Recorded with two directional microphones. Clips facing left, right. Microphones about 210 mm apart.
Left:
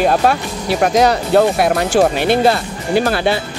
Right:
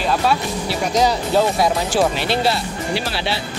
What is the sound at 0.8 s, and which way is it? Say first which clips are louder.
Speech: left 5 dB; 65° left (ahead or behind).